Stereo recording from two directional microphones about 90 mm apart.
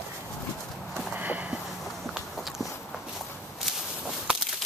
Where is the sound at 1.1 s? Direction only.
20° right (ahead or behind).